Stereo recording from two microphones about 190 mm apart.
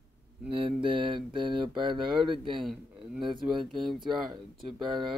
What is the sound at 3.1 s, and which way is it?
Speech, 25° right (ahead or behind).